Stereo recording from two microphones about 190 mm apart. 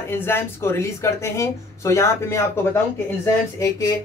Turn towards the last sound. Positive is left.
turn(degrees=20)  # may be behind; listen again after turning